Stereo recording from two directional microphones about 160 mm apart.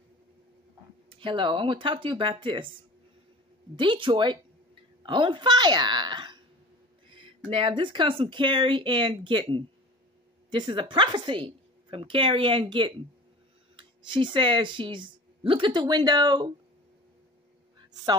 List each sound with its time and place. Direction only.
1.1 s a woman's voice: 30° right (ahead or behind)
3.7 s speech: 30° right (ahead or behind)
7.1 s a sound: 30° right (ahead or behind)
7.5 s a woman's voice: 30° right (ahead or behind)